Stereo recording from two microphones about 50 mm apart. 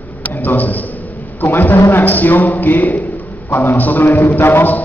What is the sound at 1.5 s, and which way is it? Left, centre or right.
A man's voice, left.